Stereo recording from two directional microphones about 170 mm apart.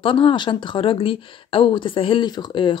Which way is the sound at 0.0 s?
30° left (ahead or behind).